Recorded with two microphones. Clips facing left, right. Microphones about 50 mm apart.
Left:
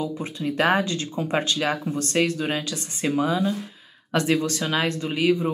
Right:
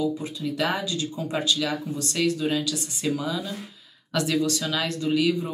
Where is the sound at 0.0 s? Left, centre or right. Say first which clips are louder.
Right 1 dB; left.